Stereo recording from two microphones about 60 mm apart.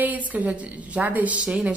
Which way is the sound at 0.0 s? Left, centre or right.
Right.